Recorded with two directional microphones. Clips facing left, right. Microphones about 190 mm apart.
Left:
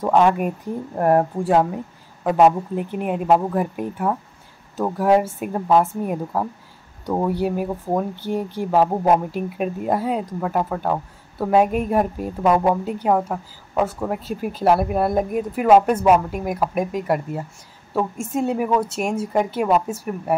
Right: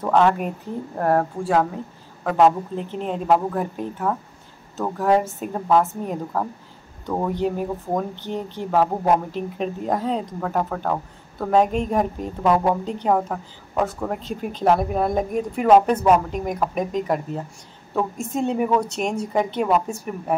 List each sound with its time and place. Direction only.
0.0 s a woman's voice: 15° left (ahead or behind)